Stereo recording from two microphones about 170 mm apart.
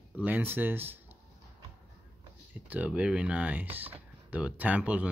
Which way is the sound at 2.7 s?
10° right (ahead or behind).